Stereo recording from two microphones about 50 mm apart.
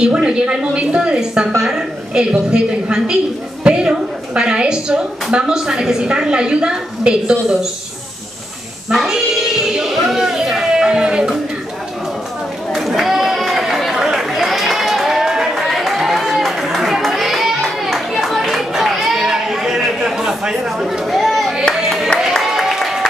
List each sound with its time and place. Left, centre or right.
0.0 s a woman's voice: centre
8.9 s a woman's voice: centre
12.7 s chatter: centre
14.0 s run: centre
21.7 s clapping: centre
22.4 s music: centre